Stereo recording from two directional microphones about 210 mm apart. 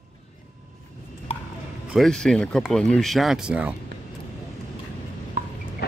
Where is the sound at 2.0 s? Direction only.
Centre (ahead or behind).